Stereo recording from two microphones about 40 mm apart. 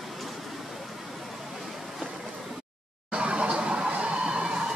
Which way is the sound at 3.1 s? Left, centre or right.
Right.